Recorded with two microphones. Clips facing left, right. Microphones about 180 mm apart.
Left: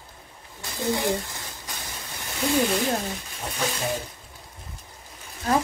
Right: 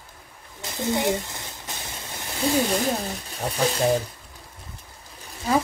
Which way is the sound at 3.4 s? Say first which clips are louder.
Right 7 dB; 35° right (ahead or behind).